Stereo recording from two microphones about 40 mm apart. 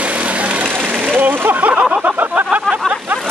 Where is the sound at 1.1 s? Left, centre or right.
Right.